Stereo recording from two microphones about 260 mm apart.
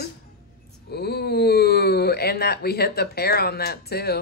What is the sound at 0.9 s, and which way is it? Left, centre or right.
Wail, left.